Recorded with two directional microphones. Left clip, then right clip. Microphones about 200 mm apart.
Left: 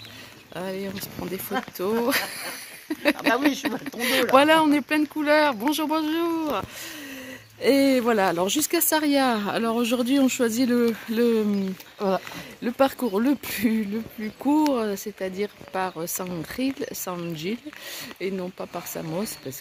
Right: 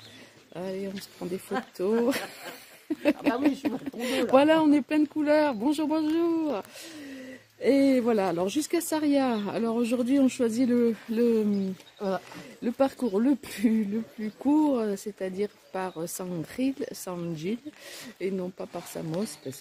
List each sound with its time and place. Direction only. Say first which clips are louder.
0.6 s speech: left 3 dB; 5° right (ahead or behind)
1.8 s speech: left 2 dB; 25° right (ahead or behind)
2.9 s a sound: left 1 dB; 30° right (ahead or behind)
3.3 s speech: left 4 dB; 30° right (ahead or behind)
7.6 s speech: left 3 dB; 10° right (ahead or behind)
12.6 s speech: left 4 dB; 5° right (ahead or behind)